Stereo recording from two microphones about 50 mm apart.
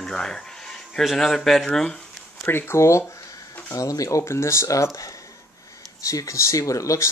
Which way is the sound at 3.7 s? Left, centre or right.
Left.